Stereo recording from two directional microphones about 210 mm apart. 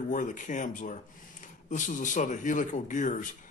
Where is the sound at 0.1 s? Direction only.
35° left (ahead or behind).